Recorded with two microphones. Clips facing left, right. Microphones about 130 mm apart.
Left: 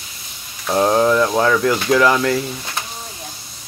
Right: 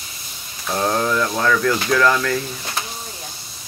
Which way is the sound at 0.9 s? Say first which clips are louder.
Left 5 dB; 15° left (ahead or behind).